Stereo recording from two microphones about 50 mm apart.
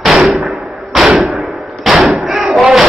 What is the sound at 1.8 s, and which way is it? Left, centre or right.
Slam, centre.